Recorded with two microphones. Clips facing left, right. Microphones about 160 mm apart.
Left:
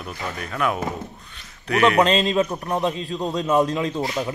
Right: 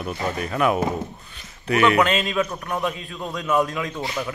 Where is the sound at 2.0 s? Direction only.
30° left (ahead or behind).